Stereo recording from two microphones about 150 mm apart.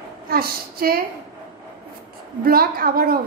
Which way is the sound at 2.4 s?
80° right.